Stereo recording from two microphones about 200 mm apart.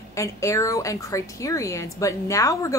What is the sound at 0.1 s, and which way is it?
A woman's voice, 15° left (ahead or behind).